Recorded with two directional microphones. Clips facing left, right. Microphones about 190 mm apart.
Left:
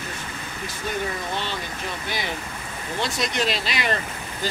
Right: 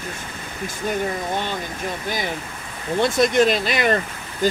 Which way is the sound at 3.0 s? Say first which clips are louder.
Right 9 dB; 50° right (ahead or behind).